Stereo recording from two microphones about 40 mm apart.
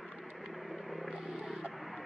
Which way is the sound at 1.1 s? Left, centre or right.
Centre.